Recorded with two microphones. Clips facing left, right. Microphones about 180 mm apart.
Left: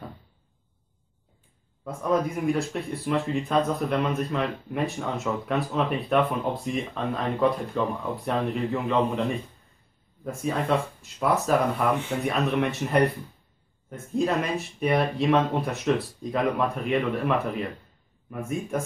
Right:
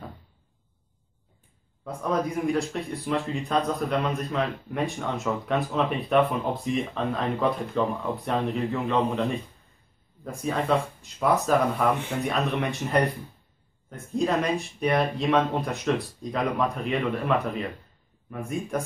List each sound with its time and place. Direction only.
1.9 s speech: centre (ahead or behind)
18.3 s speech: centre (ahead or behind)